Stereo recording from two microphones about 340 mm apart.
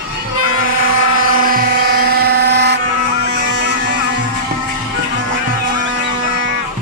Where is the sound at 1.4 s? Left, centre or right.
Right.